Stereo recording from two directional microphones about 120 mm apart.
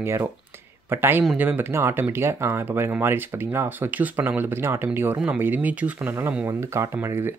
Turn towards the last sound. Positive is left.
turn(degrees=-20)  # may be behind; listen again after turning